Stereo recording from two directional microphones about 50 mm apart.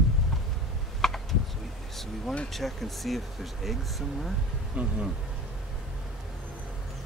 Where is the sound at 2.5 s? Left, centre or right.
Centre.